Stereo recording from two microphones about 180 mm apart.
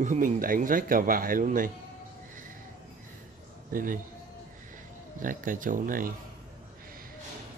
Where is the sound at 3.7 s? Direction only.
50° right (ahead or behind).